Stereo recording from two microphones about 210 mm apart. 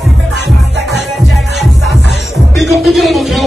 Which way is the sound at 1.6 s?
Centre (ahead or behind).